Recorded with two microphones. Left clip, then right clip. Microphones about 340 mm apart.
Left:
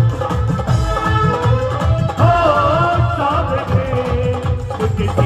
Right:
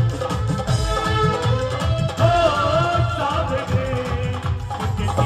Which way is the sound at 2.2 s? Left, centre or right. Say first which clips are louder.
Left 4 dB; centre.